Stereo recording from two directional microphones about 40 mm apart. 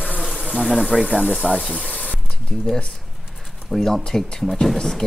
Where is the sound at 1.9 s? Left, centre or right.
Left.